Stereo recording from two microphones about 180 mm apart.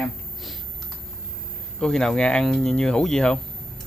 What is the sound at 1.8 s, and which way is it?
Speech, 5° left (ahead or behind).